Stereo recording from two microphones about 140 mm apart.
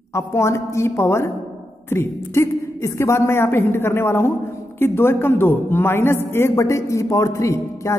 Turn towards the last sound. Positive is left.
turn(degrees=20)  # may be behind; listen again after turning